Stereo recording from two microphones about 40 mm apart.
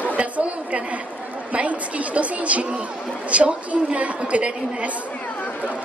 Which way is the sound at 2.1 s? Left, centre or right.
Right.